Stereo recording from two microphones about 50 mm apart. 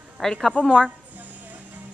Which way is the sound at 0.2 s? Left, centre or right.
Centre.